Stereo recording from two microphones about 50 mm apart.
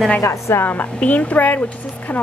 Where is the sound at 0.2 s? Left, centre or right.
Left.